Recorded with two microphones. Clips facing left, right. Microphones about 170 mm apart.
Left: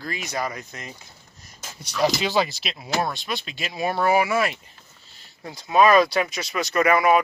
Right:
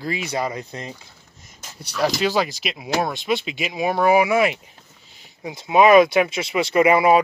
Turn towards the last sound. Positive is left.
turn(degrees=-25)  # may be behind; listen again after turning